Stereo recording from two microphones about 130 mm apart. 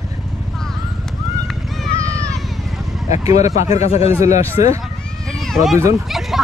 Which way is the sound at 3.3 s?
60° left (ahead or behind).